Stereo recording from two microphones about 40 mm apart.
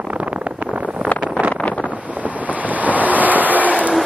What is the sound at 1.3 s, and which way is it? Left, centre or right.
Vehicle, right.